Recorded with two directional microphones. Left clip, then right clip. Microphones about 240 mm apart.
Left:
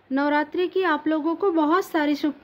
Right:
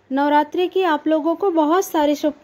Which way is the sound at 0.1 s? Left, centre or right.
Centre.